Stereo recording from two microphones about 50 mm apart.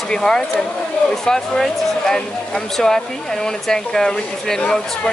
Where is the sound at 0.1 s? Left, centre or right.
Centre.